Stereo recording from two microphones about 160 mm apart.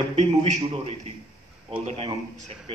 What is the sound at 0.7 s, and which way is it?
Speech, 35° right (ahead or behind).